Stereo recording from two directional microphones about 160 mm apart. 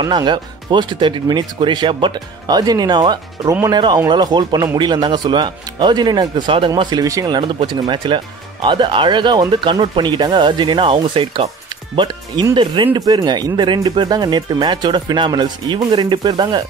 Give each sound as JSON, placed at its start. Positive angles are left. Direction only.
{"t": 0.0, "sound": "speech", "side_deg": -30}